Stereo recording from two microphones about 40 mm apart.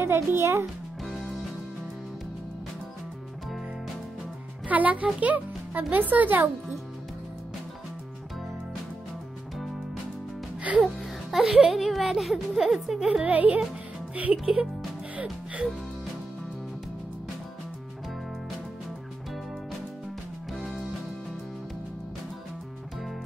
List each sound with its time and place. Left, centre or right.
0.0 s a child's voice: right
4.6 s speech: right
11.3 s speech: centre
13.2 s speech: right
14.3 s speech: centre